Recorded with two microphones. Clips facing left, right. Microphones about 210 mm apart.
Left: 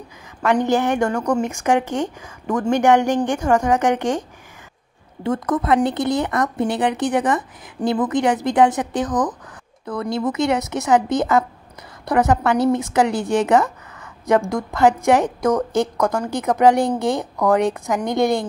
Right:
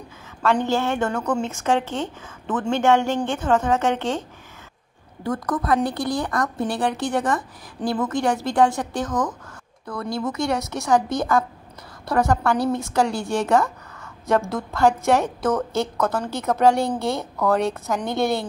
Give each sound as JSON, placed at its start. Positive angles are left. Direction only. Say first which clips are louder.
{"t": 0.4, "sound": "a woman's voice", "louder": "left 3 dB", "side_deg": 15}
{"t": 5.2, "sound": "a woman's voice", "louder": "left 4 dB", "side_deg": 25}